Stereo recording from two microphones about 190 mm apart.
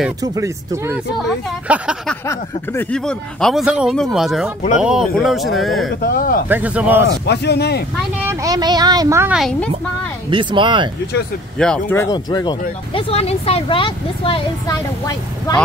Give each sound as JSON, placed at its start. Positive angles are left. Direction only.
{"t": 0.2, "sound": "speech", "side_deg": -15}
{"t": 2.2, "sound": "speech", "side_deg": 10}
{"t": 5.9, "sound": "speech", "side_deg": 50}
{"t": 6.5, "sound": "speech", "side_deg": -5}
{"t": 7.1, "sound": "speech", "side_deg": 60}
{"t": 8.3, "sound": "speech", "side_deg": -15}
{"t": 9.3, "sound": "speech", "side_deg": 0}
{"t": 10.3, "sound": "speech", "side_deg": -25}
{"t": 11.5, "sound": "speech", "side_deg": 5}
{"t": 11.9, "sound": "speech", "side_deg": 15}